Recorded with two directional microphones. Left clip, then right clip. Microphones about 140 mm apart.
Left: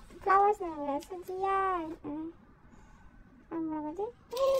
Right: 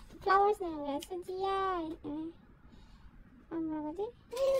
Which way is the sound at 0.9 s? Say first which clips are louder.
Left 2 dB; 15° right (ahead or behind).